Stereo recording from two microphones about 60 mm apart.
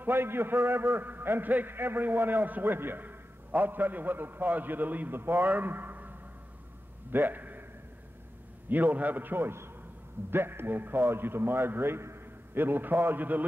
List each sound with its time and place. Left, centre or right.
0.0 s a man's voice: right
8.6 s a man's voice: right